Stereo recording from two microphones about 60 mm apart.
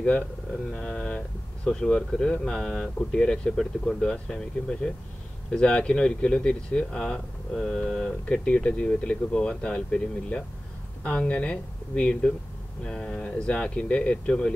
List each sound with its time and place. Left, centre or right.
0.7 s speech: centre